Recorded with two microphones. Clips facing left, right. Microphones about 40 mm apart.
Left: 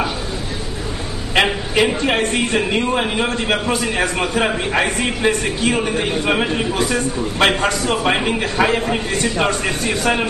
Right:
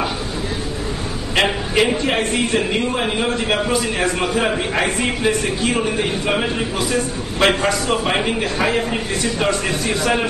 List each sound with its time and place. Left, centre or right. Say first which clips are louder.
1.3 s a sound: left 1 dB; centre
4.4 s a man's voice: left 3 dB; centre
6.8 s a man's voice: left 2 dB; left
8.4 s a man's voice: left 2 dB; centre